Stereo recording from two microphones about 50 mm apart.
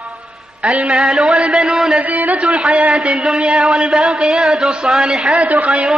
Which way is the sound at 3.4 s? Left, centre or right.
Centre.